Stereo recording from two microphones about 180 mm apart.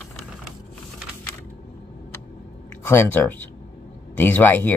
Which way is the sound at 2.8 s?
10° left (ahead or behind).